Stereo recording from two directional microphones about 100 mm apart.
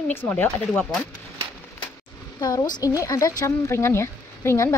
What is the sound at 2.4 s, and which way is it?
Speech, 40° left (ahead or behind).